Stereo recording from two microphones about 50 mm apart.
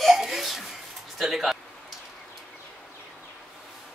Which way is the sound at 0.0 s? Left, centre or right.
Centre.